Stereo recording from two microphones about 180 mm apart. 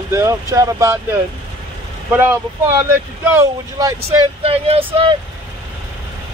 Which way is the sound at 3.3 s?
15° right (ahead or behind).